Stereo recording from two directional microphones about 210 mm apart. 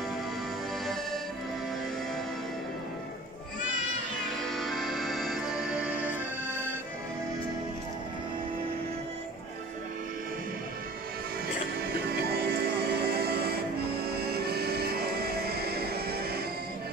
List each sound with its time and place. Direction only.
4.5 s music: centre (ahead or behind)
12.1 s music: 50° right (ahead or behind)